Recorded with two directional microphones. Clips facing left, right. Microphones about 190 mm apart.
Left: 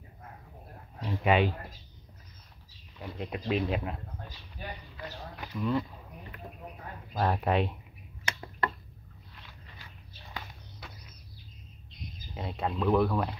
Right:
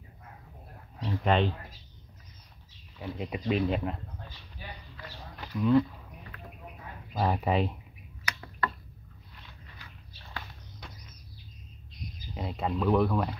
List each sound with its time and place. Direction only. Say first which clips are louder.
1.0 s speech: left 1 dB; 10° left (ahead or behind)
3.0 s speech: right 2 dB; centre (ahead or behind)
5.3 s a sound: right 7 dB; centre (ahead or behind)
7.2 s speech: even; centre (ahead or behind)
8.3 s finger snapping: left 1 dB; 25° left (ahead or behind)
10.8 s a sound: even; 5° left (ahead or behind)
12.4 s speech: right 1 dB; centre (ahead or behind)